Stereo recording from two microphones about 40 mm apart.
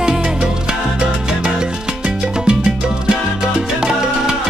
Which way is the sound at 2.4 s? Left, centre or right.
Right.